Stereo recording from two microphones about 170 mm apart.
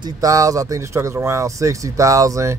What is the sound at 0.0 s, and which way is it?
Speech, 20° right (ahead or behind).